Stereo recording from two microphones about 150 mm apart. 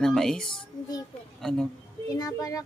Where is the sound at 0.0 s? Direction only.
5° left (ahead or behind).